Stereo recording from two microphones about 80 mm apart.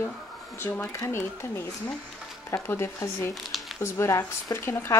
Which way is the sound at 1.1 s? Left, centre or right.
Left.